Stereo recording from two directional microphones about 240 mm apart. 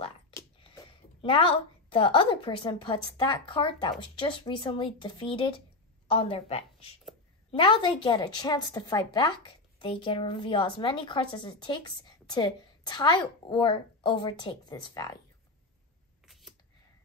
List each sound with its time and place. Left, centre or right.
0.6 s a woman's voice: left